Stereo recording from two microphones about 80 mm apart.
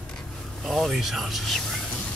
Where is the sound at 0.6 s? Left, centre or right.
Centre.